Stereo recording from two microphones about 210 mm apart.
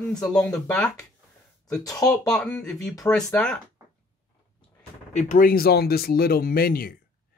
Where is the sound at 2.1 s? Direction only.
5° left (ahead or behind).